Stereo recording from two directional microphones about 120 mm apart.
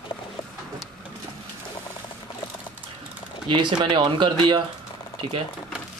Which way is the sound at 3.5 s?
40° right (ahead or behind).